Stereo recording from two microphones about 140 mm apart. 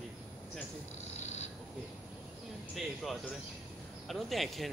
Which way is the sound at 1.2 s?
55° left (ahead or behind).